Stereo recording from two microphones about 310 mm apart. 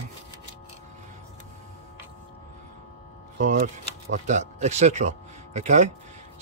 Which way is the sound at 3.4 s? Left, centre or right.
Right.